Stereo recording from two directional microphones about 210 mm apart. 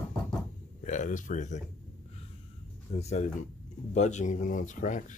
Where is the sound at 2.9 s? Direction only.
30° left (ahead or behind).